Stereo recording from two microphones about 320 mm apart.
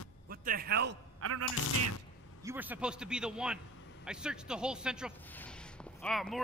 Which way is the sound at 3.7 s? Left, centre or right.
Left.